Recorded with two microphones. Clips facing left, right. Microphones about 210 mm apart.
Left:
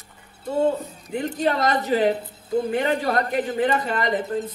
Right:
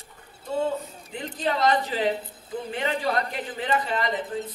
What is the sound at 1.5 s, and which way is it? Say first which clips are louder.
Speech: left 1 dB; 45° left (ahead or behind).